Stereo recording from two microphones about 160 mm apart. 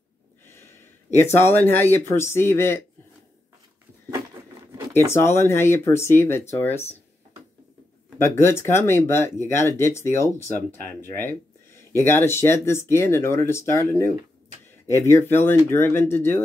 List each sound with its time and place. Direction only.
1.1 s speech: 15° left (ahead or behind)
4.9 s speech: 15° left (ahead or behind)
8.2 s speech: 15° left (ahead or behind)